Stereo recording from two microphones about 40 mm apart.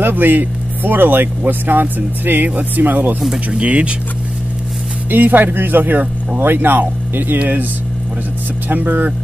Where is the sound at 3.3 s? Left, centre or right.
Right.